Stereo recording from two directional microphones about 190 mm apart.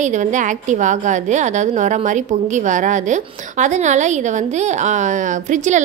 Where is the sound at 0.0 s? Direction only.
40° right (ahead or behind).